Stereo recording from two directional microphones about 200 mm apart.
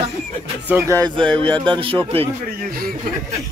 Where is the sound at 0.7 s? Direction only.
10° right (ahead or behind).